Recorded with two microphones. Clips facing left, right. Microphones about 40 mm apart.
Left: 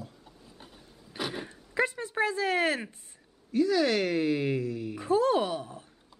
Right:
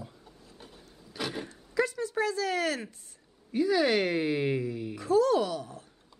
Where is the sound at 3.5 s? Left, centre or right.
Centre.